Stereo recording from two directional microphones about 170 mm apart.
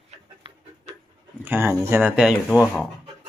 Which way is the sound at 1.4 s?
15° right (ahead or behind).